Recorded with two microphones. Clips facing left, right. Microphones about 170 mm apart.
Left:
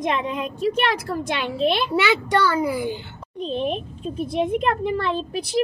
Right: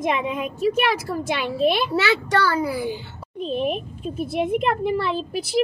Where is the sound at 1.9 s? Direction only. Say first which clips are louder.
Left 1 dB; 20° left (ahead or behind).